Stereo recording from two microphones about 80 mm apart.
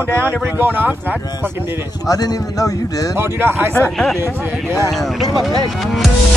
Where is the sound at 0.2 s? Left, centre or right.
Right.